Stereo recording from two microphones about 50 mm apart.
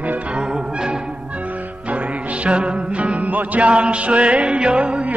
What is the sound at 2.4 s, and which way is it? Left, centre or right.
Music, right.